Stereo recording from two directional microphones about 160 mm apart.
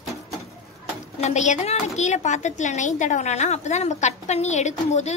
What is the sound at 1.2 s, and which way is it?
Speech, 45° left (ahead or behind).